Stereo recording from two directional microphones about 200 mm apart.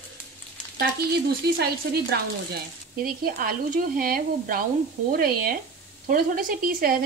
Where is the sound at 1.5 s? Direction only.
55° right (ahead or behind).